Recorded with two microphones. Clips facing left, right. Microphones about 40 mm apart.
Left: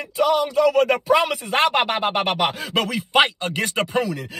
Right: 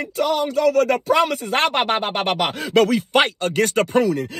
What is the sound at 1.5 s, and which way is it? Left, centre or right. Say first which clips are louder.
Speech: even; right.